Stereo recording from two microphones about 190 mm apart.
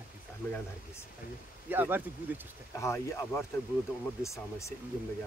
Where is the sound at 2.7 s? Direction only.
15° left (ahead or behind).